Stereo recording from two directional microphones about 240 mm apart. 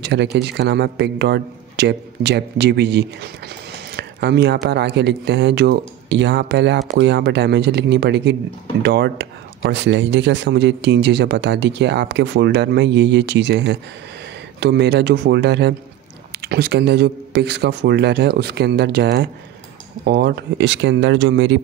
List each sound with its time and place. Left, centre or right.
0.0 s speech: right